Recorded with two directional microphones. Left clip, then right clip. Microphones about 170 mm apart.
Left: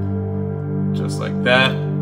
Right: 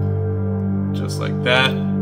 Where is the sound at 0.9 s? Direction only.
10° right (ahead or behind).